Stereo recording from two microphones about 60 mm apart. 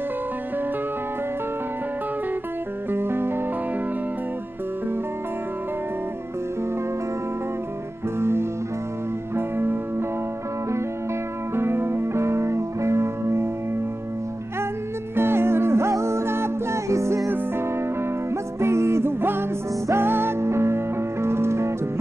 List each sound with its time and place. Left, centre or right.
2.9 s music: right
8.2 s music: right
9.6 s music: right
11.5 s music: right
15.1 s music: right
18.3 s music: right